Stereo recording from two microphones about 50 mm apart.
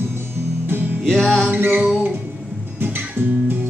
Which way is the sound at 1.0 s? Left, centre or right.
Centre.